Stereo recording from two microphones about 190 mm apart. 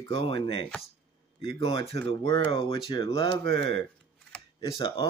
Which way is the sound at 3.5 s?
65° right (ahead or behind).